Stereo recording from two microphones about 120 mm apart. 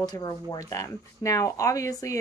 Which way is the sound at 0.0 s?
35° left (ahead or behind).